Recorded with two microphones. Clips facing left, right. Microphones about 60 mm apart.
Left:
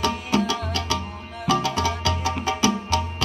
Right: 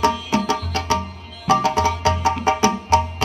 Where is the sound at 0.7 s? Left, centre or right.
Right.